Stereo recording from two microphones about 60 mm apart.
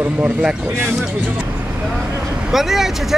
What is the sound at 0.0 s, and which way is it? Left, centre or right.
Speech, centre.